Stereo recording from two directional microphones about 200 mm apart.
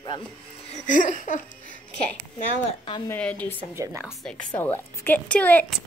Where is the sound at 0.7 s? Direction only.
40° left (ahead or behind).